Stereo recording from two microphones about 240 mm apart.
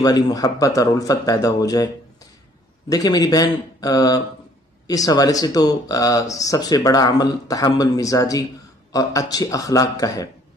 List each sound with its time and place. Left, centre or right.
0.0 s speech: centre
2.9 s speech: centre